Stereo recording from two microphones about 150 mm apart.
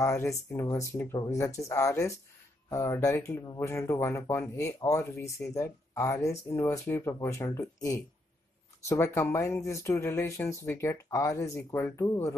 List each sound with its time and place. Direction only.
0.0 s speech: 20° left (ahead or behind)